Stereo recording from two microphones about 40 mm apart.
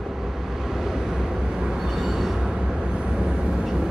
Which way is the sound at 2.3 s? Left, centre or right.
Centre.